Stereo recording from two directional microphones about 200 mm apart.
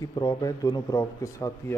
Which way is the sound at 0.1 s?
15° left (ahead or behind).